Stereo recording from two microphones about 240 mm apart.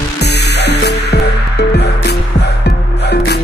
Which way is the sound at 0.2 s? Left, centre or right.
Left.